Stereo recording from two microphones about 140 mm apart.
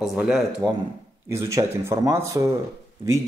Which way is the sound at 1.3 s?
20° right (ahead or behind).